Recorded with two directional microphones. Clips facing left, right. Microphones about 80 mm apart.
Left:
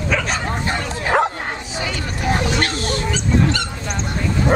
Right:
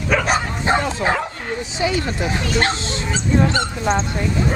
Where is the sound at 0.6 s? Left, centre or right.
Right.